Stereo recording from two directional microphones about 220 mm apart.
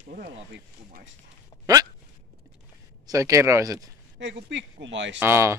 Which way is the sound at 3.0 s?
15° right (ahead or behind).